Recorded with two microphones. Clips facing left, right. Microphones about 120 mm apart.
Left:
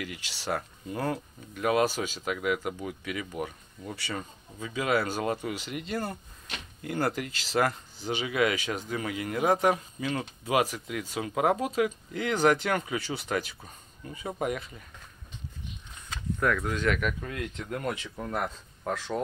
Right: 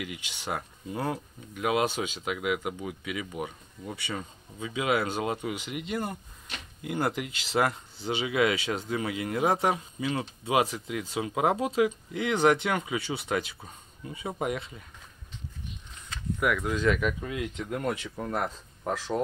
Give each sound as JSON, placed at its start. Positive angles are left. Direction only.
{"t": 0.0, "sound": "speech", "side_deg": -20}
{"t": 16.3, "sound": "speech", "side_deg": -10}